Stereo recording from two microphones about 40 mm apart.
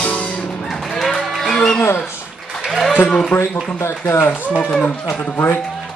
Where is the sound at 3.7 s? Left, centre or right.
Left.